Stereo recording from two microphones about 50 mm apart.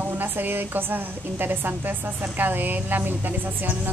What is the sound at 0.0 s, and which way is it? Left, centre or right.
A woman's voice, right.